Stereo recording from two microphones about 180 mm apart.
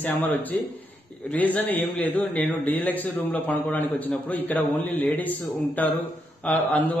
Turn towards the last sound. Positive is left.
turn(degrees=10)  # may be behind; listen again after turning